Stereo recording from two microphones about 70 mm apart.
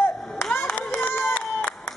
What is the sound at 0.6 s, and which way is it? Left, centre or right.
Clapping, left.